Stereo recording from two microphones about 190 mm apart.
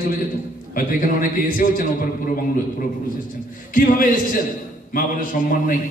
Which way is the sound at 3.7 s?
45° left (ahead or behind).